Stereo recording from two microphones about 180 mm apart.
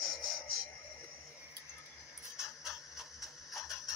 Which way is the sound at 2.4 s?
Centre (ahead or behind).